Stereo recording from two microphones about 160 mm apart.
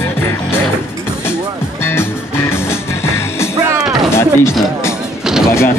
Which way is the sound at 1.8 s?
15° left (ahead or behind).